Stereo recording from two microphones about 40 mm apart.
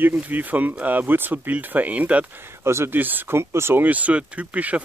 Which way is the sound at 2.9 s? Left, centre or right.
Right.